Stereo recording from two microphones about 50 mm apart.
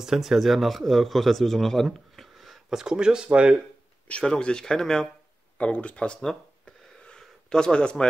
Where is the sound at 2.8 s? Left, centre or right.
Centre.